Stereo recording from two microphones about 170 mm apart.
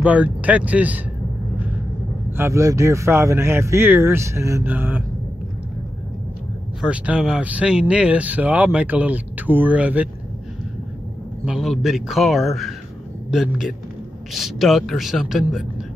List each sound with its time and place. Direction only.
0.0 s speech: 10° right (ahead or behind)
2.3 s speech: 15° right (ahead or behind)
6.8 s speech: 5° right (ahead or behind)
11.4 s a man's voice: centre (ahead or behind)